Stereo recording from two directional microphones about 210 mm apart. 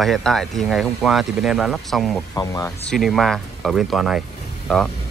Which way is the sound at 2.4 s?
15° left (ahead or behind).